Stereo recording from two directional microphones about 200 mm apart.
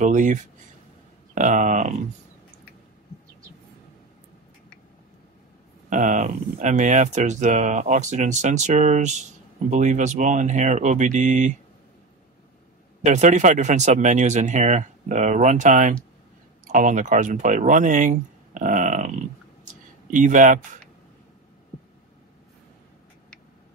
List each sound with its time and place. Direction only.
0.0 s speech: 40° right (ahead or behind)
5.9 s speech: 40° right (ahead or behind)
13.0 s speech: 35° right (ahead or behind)